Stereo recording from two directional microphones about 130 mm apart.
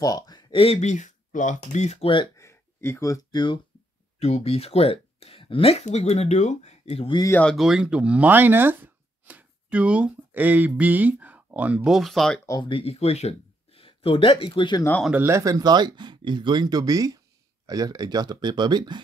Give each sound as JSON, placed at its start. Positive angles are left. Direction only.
{"t": 0.0, "sound": "speech", "side_deg": 30}
{"t": 2.3, "sound": "a sound", "side_deg": 20}
{"t": 4.2, "sound": "speech", "side_deg": 50}
{"t": 7.5, "sound": "speech", "side_deg": -5}
{"t": 12.4, "sound": "speech", "side_deg": 35}
{"t": 15.2, "sound": "speech", "side_deg": -25}